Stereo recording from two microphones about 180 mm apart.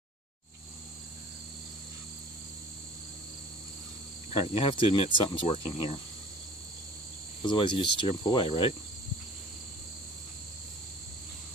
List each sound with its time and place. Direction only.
4.3 s speech: 30° left (ahead or behind)
7.4 s speech: 30° left (ahead or behind)